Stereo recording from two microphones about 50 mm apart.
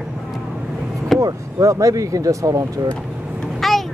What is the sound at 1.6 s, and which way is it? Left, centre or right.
Speech, right.